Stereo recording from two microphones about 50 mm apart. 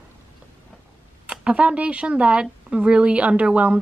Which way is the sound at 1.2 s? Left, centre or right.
Right.